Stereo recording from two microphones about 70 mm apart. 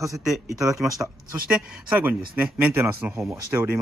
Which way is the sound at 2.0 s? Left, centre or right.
Right.